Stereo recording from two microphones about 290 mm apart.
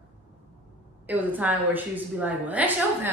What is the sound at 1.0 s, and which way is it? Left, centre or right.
A woman's voice, centre.